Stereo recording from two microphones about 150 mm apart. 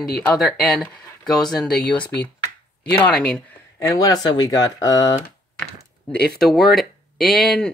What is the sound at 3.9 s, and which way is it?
Speech, 25° left (ahead or behind).